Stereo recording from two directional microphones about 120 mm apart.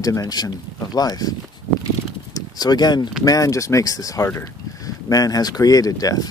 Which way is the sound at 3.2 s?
30° left (ahead or behind).